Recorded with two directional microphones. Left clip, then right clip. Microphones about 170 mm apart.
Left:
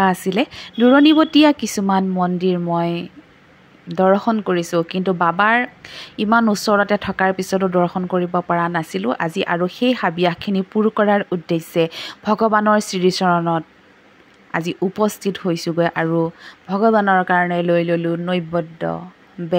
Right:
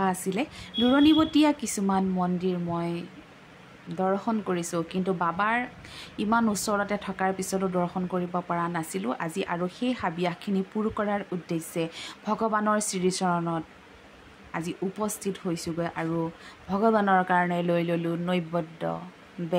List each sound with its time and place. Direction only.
0.0 s speech: 40° left (ahead or behind)